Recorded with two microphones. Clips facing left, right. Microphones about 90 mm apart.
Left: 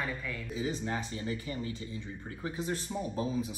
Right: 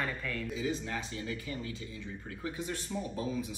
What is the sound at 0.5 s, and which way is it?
Speech, 30° left (ahead or behind).